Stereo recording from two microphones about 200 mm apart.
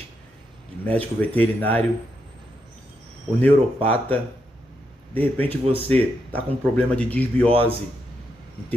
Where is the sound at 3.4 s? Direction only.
10° left (ahead or behind).